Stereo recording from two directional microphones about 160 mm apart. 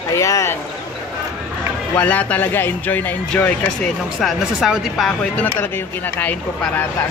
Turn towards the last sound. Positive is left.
turn(degrees=10)  # may be behind; listen again after turning